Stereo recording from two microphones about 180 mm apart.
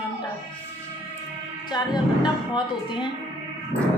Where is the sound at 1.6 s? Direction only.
25° left (ahead or behind).